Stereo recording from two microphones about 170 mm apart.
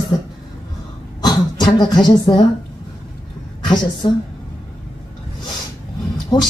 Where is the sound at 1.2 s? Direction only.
25° left (ahead or behind).